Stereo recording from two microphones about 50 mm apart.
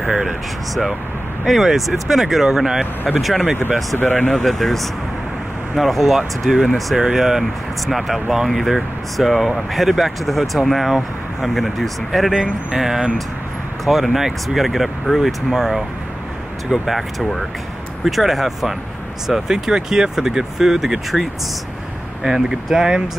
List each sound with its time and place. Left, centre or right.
0.0 s speech: centre
1.4 s speech: centre
4.0 s speech: left
4.3 s speech: centre